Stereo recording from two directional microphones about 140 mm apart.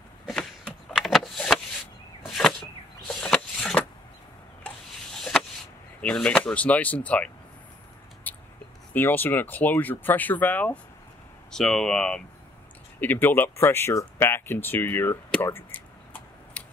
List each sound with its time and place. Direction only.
0.9 s power windows: centre (ahead or behind)
2.2 s a sound: 5° left (ahead or behind)
5.9 s speech: 10° left (ahead or behind)
8.3 s whispering: 10° left (ahead or behind)
8.9 s speech: 15° left (ahead or behind)
15.4 s tick-tock: 15° left (ahead or behind)